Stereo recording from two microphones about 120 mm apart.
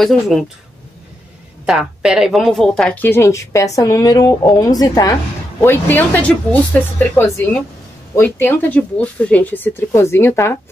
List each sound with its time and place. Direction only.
0.0 s speech: centre (ahead or behind)
1.7 s a woman's voice: 5° right (ahead or behind); by 5.1 s 30° left (ahead or behind)
5.6 s speech: 15° left (ahead or behind)